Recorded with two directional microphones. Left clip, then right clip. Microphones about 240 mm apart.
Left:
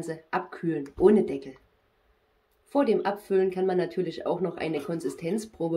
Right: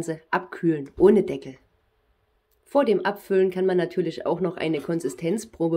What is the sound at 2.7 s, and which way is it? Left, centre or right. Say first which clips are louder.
Speech: right 4 dB; right.